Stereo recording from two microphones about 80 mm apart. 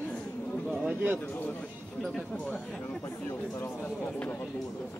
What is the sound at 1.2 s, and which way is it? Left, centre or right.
A man's voice, left.